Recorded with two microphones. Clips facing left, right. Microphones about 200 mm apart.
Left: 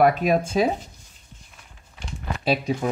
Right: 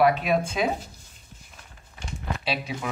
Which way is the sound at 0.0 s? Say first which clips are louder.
Left 3 dB; 45° left (ahead or behind).